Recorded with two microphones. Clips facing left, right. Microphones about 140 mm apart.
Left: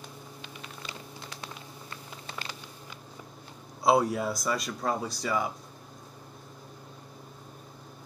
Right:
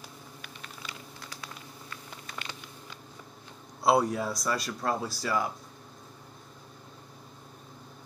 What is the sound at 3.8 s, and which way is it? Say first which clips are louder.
Speech: left 1 dB; centre (ahead or behind).